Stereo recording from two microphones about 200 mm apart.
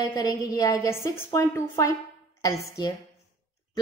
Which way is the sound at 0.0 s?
20° left (ahead or behind).